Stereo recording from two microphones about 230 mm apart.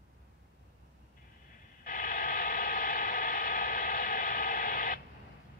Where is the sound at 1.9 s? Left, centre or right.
Left.